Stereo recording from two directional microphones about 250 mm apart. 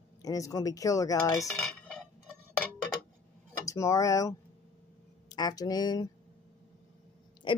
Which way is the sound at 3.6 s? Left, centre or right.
Centre.